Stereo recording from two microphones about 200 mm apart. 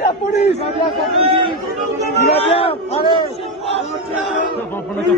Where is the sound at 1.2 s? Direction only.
25° right (ahead or behind).